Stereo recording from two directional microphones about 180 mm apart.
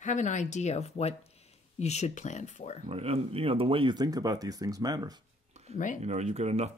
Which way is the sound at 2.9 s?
35° right (ahead or behind).